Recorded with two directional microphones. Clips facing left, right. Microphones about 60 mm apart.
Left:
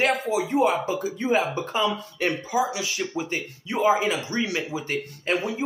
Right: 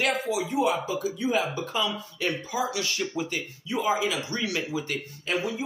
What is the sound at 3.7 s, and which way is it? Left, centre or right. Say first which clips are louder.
Speech: left 5 dB; left.